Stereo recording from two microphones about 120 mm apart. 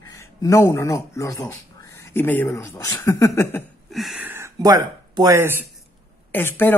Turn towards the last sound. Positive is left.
turn(degrees=15)  # may be behind; listen again after turning